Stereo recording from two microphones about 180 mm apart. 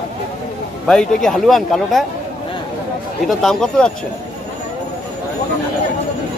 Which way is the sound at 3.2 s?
Centre (ahead or behind).